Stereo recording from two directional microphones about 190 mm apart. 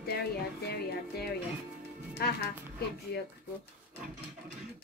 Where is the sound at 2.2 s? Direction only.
55° left (ahead or behind).